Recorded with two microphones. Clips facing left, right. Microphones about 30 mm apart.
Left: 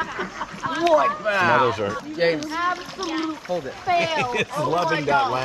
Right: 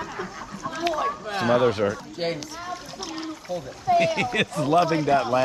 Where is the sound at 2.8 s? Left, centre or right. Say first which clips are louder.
Left 7 dB; left.